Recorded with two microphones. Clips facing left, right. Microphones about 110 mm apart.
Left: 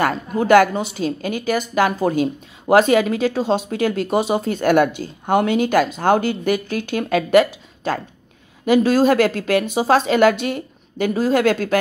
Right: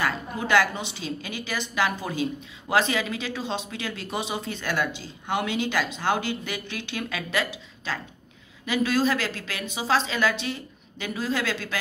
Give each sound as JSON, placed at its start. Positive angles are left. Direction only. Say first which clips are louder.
{"t": 0.0, "sound": "a woman's voice", "louder": "left 8 dB", "side_deg": 45}